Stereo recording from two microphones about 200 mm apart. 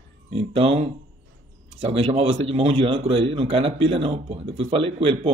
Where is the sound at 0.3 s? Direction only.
30° right (ahead or behind).